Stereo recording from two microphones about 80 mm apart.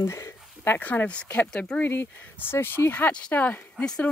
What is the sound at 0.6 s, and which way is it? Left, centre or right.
Speech, left.